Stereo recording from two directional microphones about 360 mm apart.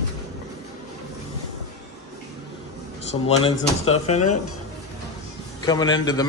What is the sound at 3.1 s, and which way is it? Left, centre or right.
A man's voice, centre.